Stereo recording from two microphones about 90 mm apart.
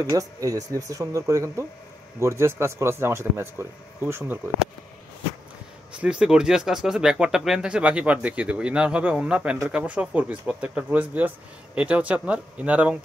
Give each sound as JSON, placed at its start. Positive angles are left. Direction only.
{"t": 0.1, "sound": "speech", "side_deg": -40}
{"t": 5.9, "sound": "speech", "side_deg": -10}